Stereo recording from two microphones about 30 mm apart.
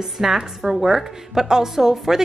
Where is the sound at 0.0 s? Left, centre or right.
Centre.